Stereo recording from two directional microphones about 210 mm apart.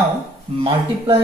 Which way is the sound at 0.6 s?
25° right (ahead or behind).